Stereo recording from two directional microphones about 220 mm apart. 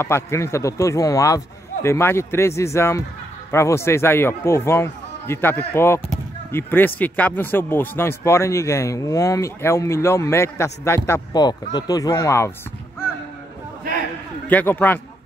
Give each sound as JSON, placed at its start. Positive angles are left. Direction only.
{"t": 0.0, "sound": "speech", "side_deg": 10}
{"t": 14.5, "sound": "speech", "side_deg": 10}